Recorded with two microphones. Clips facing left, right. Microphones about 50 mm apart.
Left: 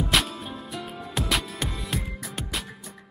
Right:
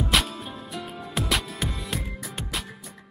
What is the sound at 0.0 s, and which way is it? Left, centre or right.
Music, centre.